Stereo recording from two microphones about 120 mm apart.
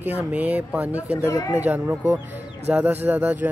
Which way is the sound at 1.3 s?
25° left (ahead or behind).